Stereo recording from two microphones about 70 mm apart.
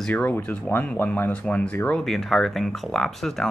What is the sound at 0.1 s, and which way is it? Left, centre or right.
Speech, left.